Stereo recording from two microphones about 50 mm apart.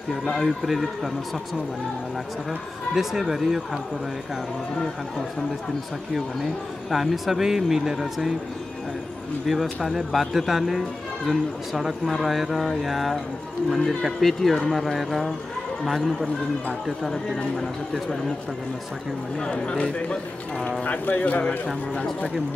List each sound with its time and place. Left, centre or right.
0.1 s speech: centre
2.9 s speech: centre
6.1 s speech: centre
9.5 s speech: centre
19.4 s speech: centre
21.0 s speech: left